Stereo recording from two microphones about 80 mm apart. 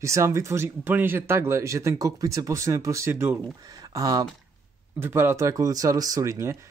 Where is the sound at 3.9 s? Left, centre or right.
Right.